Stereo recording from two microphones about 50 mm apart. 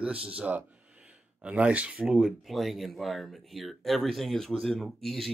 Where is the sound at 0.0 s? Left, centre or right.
Right.